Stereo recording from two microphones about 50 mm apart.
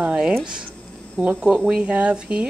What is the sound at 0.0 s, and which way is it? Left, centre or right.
Speech, centre.